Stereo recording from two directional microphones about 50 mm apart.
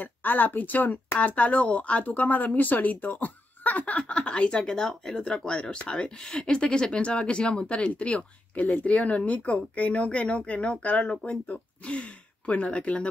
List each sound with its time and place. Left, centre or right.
0.0 s speech: left
1.2 s speech: left
4.6 s speech: centre